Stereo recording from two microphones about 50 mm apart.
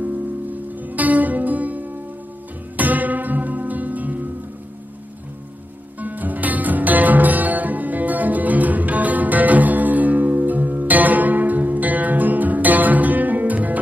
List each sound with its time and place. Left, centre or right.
0.0 s music: right
5.9 s music: right